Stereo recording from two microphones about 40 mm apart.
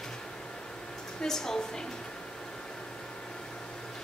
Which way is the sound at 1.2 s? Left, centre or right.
Centre.